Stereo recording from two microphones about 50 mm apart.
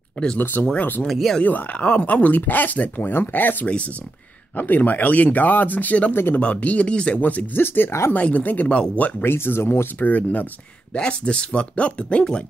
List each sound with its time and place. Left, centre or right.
0.4 s speech: left
1.0 s speech: centre
1.4 s speech: left
3.6 s speech: left
4.6 s speech: left
6.1 s speech: left
6.5 s speech: left
7.2 s speech: left
8.1 s speech: left
8.6 s speech: left
9.2 s speech: left
9.9 s speech: left
10.9 s speech: left